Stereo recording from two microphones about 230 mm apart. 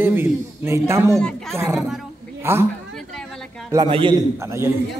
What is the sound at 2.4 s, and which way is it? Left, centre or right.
Speech, centre.